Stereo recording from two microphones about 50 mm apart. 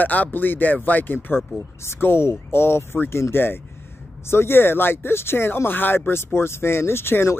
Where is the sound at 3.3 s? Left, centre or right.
Left.